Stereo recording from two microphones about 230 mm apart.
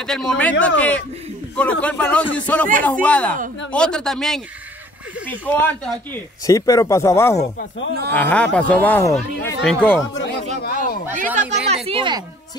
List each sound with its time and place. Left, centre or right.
0.0 s speech: centre
5.5 s speech: centre
10.1 s speech: left
11.3 s a woman's voice: right